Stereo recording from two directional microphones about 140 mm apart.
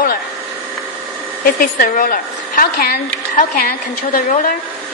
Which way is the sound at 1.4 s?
85° left.